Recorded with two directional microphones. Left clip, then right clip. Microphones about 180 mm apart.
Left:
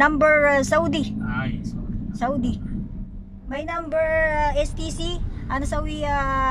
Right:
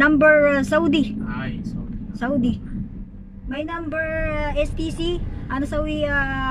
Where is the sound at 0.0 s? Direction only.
5° right (ahead or behind).